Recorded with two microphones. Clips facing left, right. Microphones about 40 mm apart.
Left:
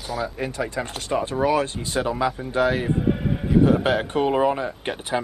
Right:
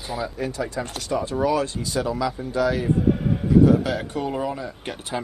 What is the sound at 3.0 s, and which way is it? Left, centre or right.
Speech, left.